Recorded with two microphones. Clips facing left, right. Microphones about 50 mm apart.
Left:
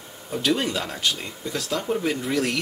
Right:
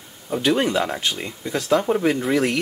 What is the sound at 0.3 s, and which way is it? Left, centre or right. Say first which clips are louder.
Speech: right 4 dB; right.